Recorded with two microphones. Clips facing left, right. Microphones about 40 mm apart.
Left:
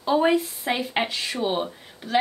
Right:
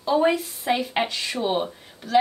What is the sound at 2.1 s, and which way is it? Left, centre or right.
Speech, left.